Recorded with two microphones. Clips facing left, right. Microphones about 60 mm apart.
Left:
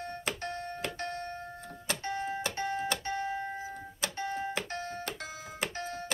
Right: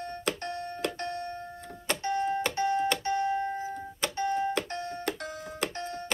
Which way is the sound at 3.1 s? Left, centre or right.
Centre.